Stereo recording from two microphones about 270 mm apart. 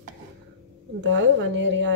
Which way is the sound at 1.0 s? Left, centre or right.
Right.